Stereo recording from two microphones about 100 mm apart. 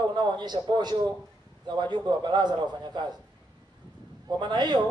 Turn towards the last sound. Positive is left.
turn(degrees=-45)  # may be behind; listen again after turning